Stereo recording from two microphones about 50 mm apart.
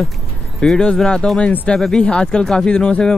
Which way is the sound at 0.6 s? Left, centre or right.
Centre.